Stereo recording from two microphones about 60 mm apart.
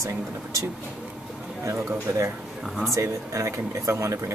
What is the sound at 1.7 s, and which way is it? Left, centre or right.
Speech, right.